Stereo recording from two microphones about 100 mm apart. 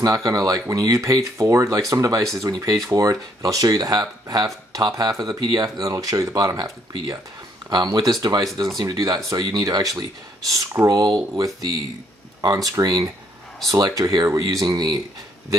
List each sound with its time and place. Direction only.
0.0 s speech: 35° right (ahead or behind)